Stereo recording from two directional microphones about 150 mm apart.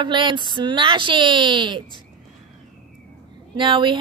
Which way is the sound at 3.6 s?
35° right (ahead or behind).